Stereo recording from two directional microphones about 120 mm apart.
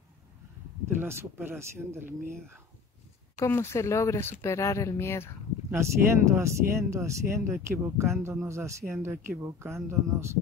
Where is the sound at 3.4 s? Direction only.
25° left (ahead or behind).